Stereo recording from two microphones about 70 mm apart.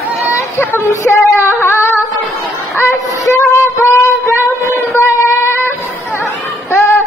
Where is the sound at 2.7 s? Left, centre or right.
Left.